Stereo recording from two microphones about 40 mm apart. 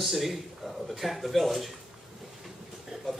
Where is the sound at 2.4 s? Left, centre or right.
Centre.